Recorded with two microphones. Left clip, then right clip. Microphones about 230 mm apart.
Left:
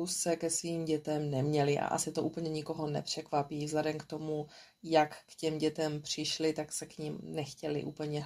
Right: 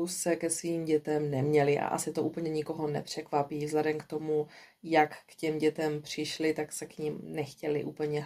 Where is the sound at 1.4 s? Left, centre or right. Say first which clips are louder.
Right 5 dB; left.